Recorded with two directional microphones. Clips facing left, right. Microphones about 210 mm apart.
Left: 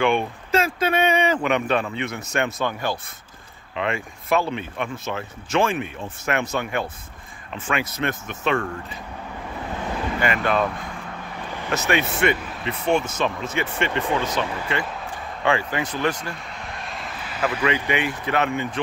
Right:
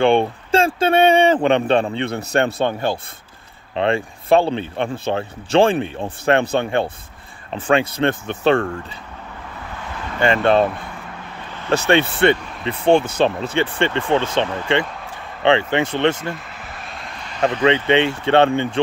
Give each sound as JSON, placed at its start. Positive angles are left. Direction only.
{"t": 0.0, "sound": "speech", "side_deg": -30}
{"t": 10.2, "sound": "speech", "side_deg": -30}
{"t": 11.7, "sound": "speech", "side_deg": -30}
{"t": 16.4, "sound": "vehicle", "side_deg": -5}
{"t": 17.4, "sound": "speech", "side_deg": -25}